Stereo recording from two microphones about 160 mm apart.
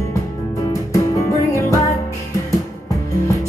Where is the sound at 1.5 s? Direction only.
20° left (ahead or behind).